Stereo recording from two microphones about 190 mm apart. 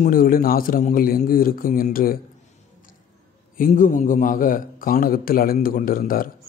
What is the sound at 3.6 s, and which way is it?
A man's voice, 45° left (ahead or behind).